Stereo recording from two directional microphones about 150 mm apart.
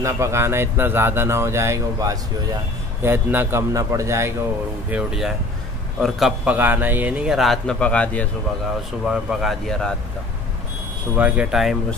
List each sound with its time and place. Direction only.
0.0 s speech: 20° right (ahead or behind)
4.9 s a man's voice: 5° right (ahead or behind)
9.0 s a man's voice: 5° right (ahead or behind)
11.1 s speech: 10° right (ahead or behind)